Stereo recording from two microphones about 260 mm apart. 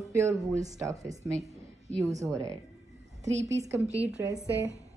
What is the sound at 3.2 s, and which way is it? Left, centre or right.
A woman's voice, centre.